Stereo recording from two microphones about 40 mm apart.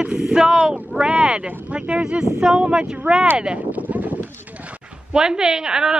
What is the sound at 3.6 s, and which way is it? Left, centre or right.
Speech, right.